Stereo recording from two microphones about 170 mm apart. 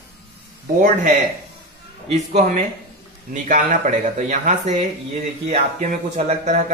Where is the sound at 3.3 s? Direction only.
45° right (ahead or behind).